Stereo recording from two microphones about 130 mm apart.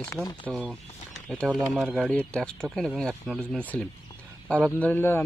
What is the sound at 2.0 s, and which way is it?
Speech, 5° left (ahead or behind).